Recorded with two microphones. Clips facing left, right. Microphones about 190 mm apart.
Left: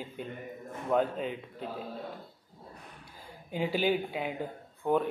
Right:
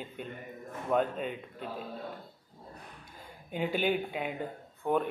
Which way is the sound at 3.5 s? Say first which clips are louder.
Left 1 dB; 5° left (ahead or behind).